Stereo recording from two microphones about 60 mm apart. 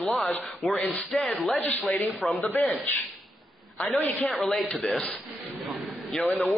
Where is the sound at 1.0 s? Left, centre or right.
Centre.